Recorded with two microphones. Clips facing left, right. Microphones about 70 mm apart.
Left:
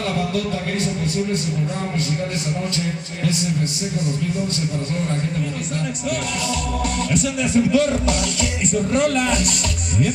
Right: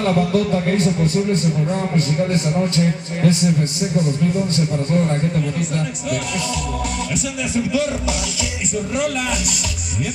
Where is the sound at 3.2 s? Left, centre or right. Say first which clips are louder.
Right 6 dB; right.